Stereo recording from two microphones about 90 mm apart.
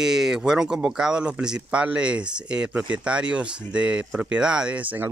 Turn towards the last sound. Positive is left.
turn(degrees=-15)  # may be behind; listen again after turning